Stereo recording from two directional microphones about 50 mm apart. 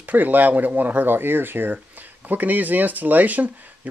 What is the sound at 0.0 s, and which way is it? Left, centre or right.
Speech, right.